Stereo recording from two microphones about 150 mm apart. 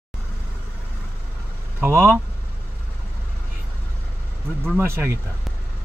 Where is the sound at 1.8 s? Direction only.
15° right (ahead or behind).